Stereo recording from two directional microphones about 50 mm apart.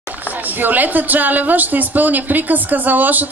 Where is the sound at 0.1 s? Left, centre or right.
Right.